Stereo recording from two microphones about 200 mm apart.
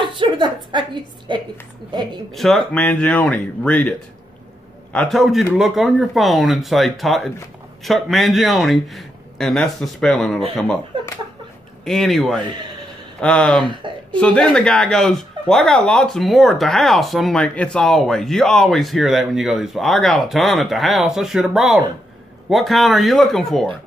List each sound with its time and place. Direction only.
0.1 s a woman's voice: 25° right (ahead or behind)
2.3 s speech: centre (ahead or behind)
4.9 s speech: centre (ahead or behind)
11.8 s speech: centre (ahead or behind)
13.6 s a woman's voice: 25° right (ahead or behind)
14.1 s speech: 5° left (ahead or behind)